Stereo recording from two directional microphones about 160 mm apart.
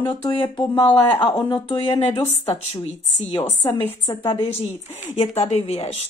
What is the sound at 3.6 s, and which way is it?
Speech, 15° left (ahead or behind).